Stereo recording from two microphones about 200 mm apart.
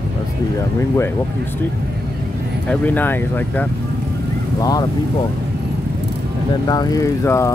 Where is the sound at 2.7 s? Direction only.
10° left (ahead or behind).